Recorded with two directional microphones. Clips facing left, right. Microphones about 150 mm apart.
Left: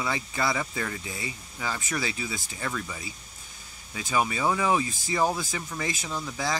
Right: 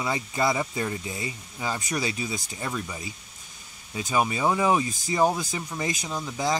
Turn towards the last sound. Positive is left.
turn(degrees=-15)  # may be behind; listen again after turning